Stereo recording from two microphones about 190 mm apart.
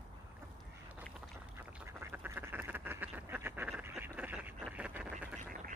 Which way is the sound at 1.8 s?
10° right (ahead or behind).